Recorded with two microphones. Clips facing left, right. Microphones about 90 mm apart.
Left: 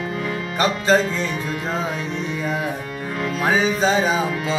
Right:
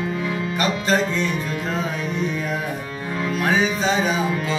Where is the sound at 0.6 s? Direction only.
30° left (ahead or behind).